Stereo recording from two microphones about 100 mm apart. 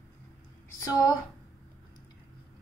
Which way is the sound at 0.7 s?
35° left (ahead or behind).